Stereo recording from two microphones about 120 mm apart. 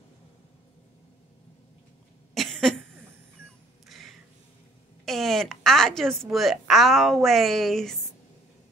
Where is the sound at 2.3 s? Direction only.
Centre (ahead or behind).